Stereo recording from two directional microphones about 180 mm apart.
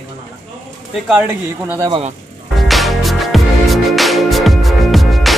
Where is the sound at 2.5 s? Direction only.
Centre (ahead or behind).